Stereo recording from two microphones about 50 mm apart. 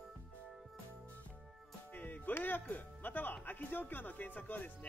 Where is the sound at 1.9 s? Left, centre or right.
Left.